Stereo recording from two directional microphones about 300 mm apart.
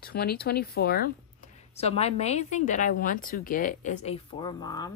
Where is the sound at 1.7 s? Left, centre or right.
Left.